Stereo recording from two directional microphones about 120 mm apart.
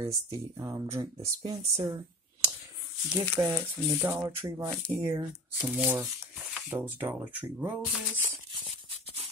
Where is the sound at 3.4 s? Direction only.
25° right (ahead or behind).